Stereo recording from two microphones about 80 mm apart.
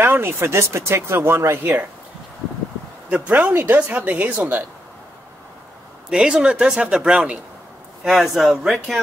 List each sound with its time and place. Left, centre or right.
0.0 s speech: right
3.1 s speech: centre
6.0 s a man's voice: centre